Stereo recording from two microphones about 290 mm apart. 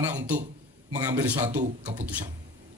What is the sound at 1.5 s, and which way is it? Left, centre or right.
Speech, right.